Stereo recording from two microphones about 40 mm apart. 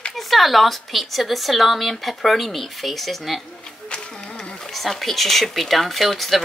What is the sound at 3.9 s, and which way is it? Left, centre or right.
Music, centre.